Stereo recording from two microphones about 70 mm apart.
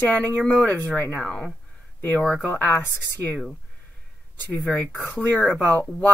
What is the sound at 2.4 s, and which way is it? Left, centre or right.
Speech, left.